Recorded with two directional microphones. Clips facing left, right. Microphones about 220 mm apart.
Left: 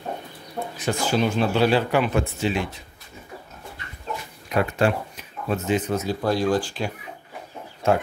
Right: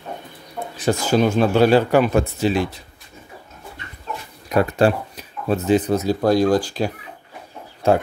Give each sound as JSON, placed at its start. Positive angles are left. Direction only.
{"t": 0.7, "sound": "speech", "side_deg": -40}
{"t": 4.5, "sound": "speech", "side_deg": -35}